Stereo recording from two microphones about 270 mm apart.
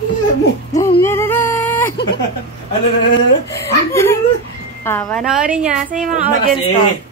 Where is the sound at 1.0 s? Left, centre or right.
Centre.